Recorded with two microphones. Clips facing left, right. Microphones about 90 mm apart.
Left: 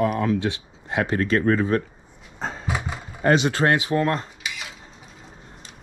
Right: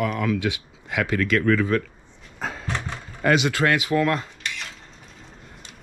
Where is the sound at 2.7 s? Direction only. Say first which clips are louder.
Left 3 dB; 10° left (ahead or behind).